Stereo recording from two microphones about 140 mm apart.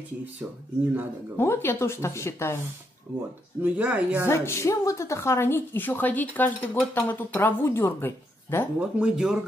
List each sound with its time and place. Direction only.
1.4 s speech: 15° left (ahead or behind)
3.1 s speech: 15° right (ahead or behind)
4.3 s a woman's voice: 20° left (ahead or behind)
8.7 s speech: 5° right (ahead or behind)